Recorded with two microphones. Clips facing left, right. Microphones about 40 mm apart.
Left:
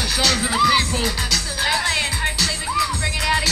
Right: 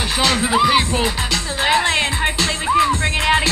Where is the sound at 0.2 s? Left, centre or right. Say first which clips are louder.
Right 3 dB; right.